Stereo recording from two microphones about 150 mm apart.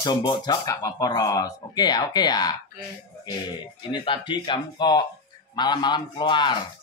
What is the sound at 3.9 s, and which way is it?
Speech, 35° left (ahead or behind).